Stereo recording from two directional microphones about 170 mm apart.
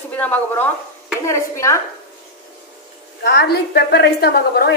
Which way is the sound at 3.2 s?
80° left.